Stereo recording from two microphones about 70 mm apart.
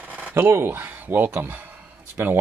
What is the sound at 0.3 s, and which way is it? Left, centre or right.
Speech, right.